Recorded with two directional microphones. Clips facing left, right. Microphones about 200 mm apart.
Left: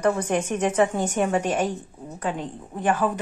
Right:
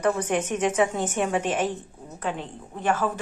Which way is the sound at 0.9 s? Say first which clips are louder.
Left 2 dB; 10° left (ahead or behind).